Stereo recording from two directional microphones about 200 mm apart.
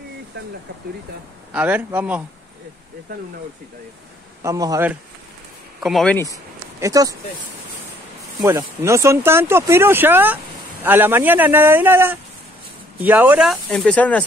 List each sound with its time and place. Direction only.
1.5 s speech: 10° right (ahead or behind)
4.4 s speech: 15° right (ahead or behind)
5.8 s speech: centre (ahead or behind)
6.8 s speech: 15° right (ahead or behind)
8.4 s speech: 15° right (ahead or behind); by 14.2 s 5° left (ahead or behind)